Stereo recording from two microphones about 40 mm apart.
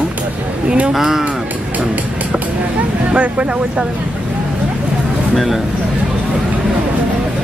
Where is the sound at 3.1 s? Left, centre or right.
Right.